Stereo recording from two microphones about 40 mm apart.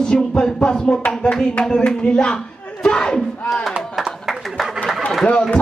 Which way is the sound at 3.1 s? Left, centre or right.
Centre.